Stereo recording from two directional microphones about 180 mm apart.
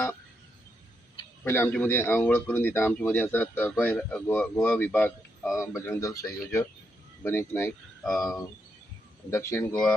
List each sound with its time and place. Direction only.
1.4 s a man's voice: 15° left (ahead or behind)